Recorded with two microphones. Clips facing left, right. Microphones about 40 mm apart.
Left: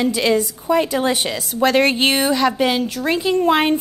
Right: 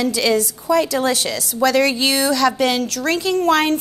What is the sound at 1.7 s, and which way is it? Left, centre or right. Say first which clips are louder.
A woman's voice: left 1 dB; left.